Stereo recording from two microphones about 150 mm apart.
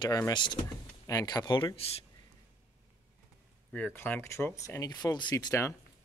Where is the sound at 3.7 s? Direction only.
10° left (ahead or behind).